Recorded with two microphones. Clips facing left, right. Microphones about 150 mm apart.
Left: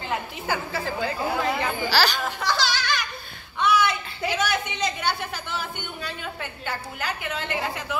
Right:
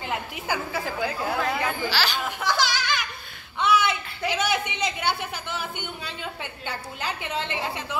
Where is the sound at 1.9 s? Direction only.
40° left (ahead or behind).